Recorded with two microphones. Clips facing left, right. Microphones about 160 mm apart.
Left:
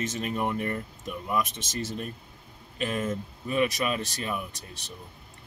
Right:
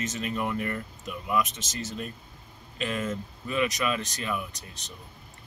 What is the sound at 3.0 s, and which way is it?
Speech, 35° left (ahead or behind).